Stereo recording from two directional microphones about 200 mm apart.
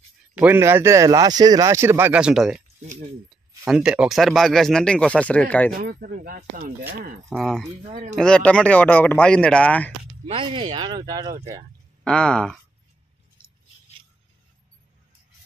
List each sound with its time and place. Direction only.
0.4 s speech: 10° right (ahead or behind)
3.6 s speech: 5° right (ahead or behind)
5.8 s speech: 45° right (ahead or behind)
7.3 s speech: centre (ahead or behind)
7.9 s speech: 35° right (ahead or behind)
8.2 s speech: 5° left (ahead or behind)
10.2 s speech: 25° right (ahead or behind)
12.0 s speech: 5° left (ahead or behind)